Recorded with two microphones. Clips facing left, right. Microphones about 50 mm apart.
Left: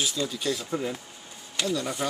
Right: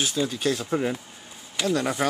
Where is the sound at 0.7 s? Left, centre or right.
Right.